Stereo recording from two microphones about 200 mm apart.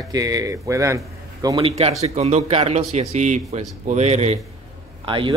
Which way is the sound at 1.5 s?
30° right (ahead or behind).